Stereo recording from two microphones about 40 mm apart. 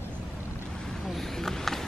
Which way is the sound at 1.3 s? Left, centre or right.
Centre.